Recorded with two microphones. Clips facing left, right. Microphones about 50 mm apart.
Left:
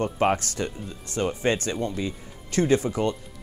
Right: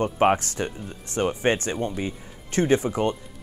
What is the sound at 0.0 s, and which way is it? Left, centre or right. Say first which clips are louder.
Speech: right 3 dB; right.